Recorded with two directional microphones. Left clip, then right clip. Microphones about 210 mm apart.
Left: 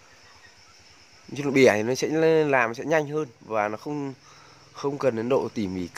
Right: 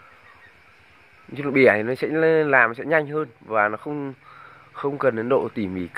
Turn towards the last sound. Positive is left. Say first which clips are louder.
# right 3 dB
turn(degrees=15)  # may be behind; listen again after turning